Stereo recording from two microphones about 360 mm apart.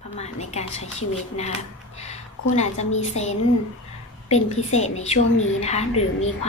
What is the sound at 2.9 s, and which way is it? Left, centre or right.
A woman's voice, centre.